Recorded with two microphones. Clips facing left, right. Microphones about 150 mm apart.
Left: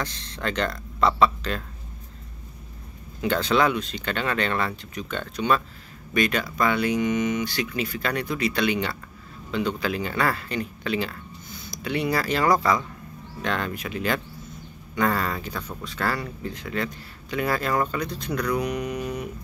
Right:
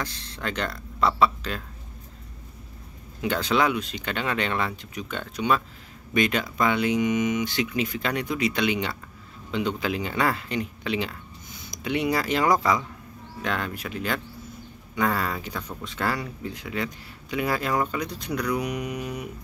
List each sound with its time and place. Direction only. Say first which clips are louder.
0.0 s speech: left 2 dB; 5° right (ahead or behind)
3.2 s speech: left 2 dB; 10° right (ahead or behind)
15.5 s speech: left 1 dB; 20° right (ahead or behind)